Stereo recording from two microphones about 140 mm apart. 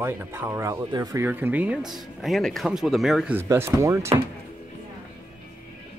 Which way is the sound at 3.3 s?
20° right (ahead or behind).